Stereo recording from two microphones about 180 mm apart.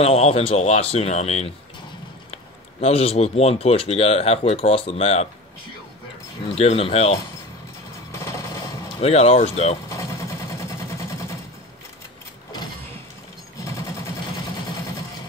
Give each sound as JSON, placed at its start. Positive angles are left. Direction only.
{"t": 0.0, "sound": "speech", "side_deg": 35}
{"t": 6.5, "sound": "speech", "side_deg": 35}
{"t": 8.1, "sound": "a sound", "side_deg": 15}
{"t": 9.0, "sound": "speech", "side_deg": 35}
{"t": 9.8, "sound": "vehicle", "side_deg": 15}
{"t": 13.6, "sound": "a sound", "side_deg": 15}